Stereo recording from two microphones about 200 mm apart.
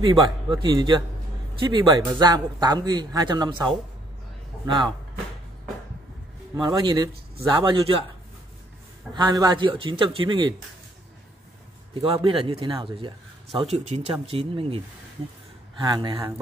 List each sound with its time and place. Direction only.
0.0 s a man's voice: 25° right (ahead or behind)
4.6 s a man's voice: 25° right (ahead or behind)
6.5 s a man's voice: 20° right (ahead or behind)
9.1 s a man's voice: 20° right (ahead or behind)
11.9 s a man's voice: 25° right (ahead or behind)
15.8 s a man's voice: 20° right (ahead or behind)